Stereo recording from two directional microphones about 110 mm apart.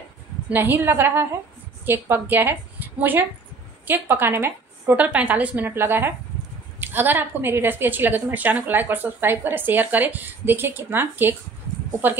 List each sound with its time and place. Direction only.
0.5 s a woman's voice: 20° right (ahead or behind)